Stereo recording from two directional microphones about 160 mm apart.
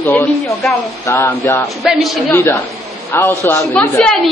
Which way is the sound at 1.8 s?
Centre (ahead or behind).